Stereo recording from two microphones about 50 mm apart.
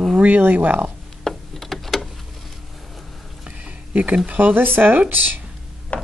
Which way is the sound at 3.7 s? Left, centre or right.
Right.